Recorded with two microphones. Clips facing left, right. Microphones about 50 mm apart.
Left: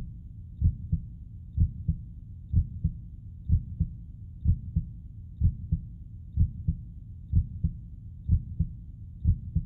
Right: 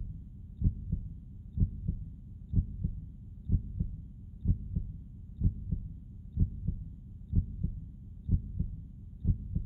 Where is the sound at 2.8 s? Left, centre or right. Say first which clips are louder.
Left 5 dB; centre.